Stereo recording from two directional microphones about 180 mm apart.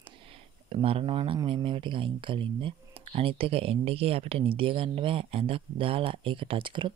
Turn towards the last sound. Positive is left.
turn(degrees=-25)  # may be behind; listen again after turning